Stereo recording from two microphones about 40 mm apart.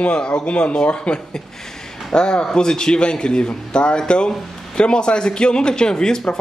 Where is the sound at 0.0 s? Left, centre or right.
Left.